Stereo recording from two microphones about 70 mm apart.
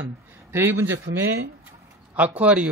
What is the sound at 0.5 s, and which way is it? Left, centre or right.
Speech, right.